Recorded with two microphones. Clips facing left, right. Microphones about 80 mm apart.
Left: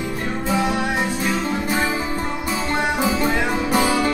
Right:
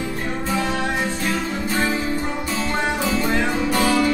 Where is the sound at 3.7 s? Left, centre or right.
Centre.